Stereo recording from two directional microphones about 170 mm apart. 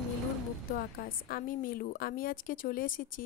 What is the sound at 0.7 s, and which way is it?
A woman's voice, 60° left (ahead or behind).